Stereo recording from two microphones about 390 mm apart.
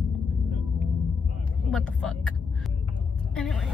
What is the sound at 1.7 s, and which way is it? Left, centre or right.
Speech, centre.